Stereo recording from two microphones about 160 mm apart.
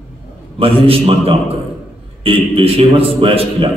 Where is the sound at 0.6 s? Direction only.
35° right (ahead or behind).